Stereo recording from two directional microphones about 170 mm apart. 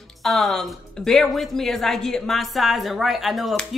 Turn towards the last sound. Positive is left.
turn(degrees=0)  # may be behind; listen again after turning